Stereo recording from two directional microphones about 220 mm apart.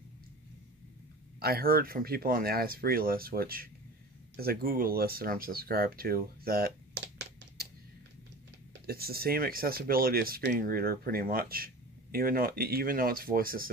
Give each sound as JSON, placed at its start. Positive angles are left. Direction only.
{"t": 1.4, "sound": "speech", "side_deg": -45}
{"t": 8.8, "sound": "speech", "side_deg": -45}